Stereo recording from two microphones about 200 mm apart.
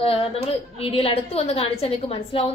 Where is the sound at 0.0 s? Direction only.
30° left (ahead or behind).